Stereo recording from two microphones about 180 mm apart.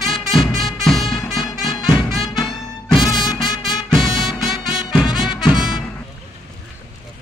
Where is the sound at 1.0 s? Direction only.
30° left (ahead or behind).